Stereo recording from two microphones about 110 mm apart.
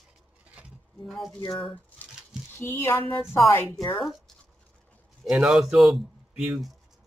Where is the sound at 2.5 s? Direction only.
20° left (ahead or behind).